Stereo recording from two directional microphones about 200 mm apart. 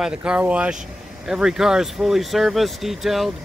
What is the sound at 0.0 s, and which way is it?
Speech, 5° right (ahead or behind).